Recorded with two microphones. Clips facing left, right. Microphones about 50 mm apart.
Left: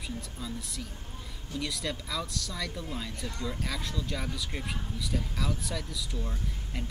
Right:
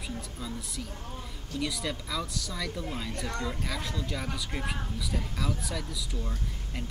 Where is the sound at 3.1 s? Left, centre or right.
Right.